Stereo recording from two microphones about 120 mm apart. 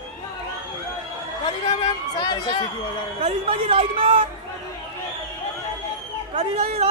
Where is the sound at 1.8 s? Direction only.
35° left (ahead or behind).